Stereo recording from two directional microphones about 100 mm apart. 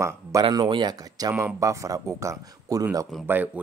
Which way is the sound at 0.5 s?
50° right (ahead or behind).